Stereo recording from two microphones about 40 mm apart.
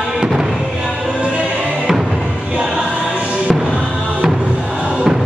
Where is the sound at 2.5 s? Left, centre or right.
Right.